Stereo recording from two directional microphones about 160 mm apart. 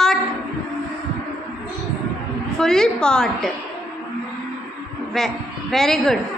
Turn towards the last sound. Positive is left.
turn(degrees=0)  # may be behind; listen again after turning